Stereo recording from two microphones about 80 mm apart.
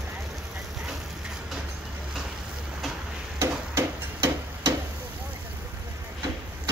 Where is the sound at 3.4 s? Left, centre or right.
Right.